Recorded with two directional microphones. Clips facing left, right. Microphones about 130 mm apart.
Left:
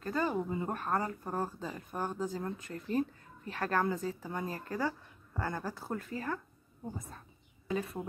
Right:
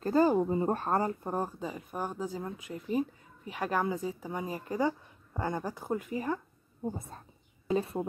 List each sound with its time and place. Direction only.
0.0 s speech: 35° right (ahead or behind); by 6.4 s 15° right (ahead or behind)
7.0 s whispering: 30° right (ahead or behind)